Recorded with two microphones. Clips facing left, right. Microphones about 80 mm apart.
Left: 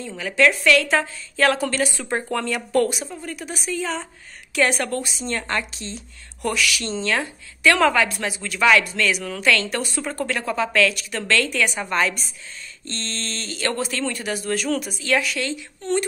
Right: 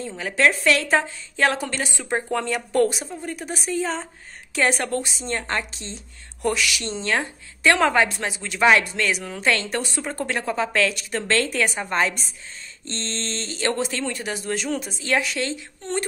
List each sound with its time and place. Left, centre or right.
0.0 s a woman's voice: right